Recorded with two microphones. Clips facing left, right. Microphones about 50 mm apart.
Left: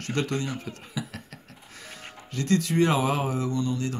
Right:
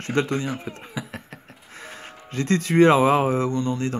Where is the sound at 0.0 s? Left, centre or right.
Right.